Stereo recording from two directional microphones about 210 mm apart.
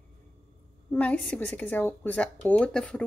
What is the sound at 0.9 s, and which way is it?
Speech, 5° left (ahead or behind).